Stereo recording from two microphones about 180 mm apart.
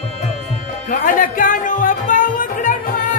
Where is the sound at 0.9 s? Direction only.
50° left (ahead or behind).